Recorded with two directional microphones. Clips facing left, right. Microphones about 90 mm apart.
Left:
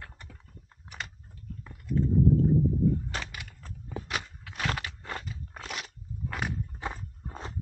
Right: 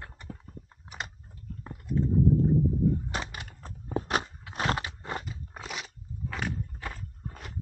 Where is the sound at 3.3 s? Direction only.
35° right (ahead or behind).